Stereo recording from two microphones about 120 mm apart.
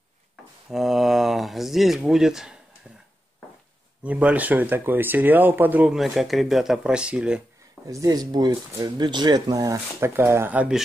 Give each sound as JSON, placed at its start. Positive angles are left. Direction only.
{"t": 0.7, "sound": "speech", "side_deg": 0}
{"t": 4.0, "sound": "speech", "side_deg": -10}
{"t": 7.8, "sound": "speech", "side_deg": -30}